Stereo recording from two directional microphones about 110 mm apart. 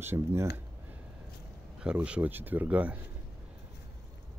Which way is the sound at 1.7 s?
10° right (ahead or behind).